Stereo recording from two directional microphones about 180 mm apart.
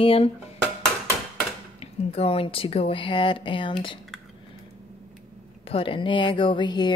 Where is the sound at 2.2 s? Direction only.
30° left (ahead or behind).